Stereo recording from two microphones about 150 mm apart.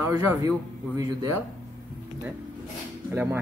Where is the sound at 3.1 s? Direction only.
15° right (ahead or behind).